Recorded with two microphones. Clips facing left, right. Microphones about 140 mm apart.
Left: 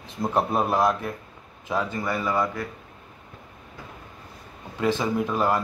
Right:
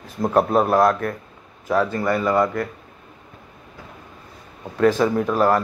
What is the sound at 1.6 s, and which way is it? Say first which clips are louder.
Speech: right 7 dB; 50° right (ahead or behind).